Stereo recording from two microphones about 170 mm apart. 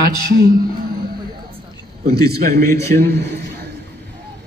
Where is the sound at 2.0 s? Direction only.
70° right (ahead or behind).